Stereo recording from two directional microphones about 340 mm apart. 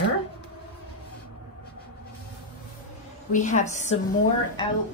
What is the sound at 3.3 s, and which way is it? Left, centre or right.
Speech, left.